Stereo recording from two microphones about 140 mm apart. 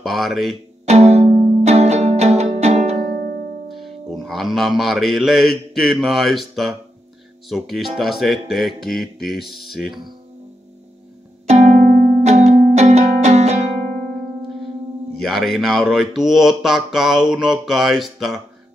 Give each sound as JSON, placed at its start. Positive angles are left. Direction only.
{"t": 0.0, "sound": "speech", "side_deg": 0}
{"t": 0.8, "sound": "music", "side_deg": -50}
{"t": 3.1, "sound": "music", "side_deg": -90}
{"t": 3.6, "sound": "speech", "side_deg": 0}
{"t": 11.4, "sound": "music", "side_deg": -55}
{"t": 12.2, "sound": "music", "side_deg": -55}
{"t": 15.1, "sound": "speech", "side_deg": 0}